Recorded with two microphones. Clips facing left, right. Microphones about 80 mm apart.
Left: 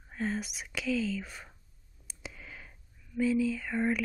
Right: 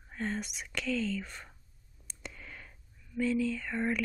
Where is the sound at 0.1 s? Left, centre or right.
Centre.